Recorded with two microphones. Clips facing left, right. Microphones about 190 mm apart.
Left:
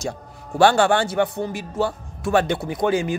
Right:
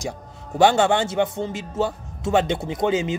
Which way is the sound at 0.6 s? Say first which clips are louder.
Left 1 dB; 20° right (ahead or behind).